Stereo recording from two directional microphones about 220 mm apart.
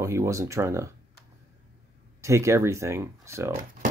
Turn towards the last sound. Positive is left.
turn(degrees=-15)  # may be behind; listen again after turning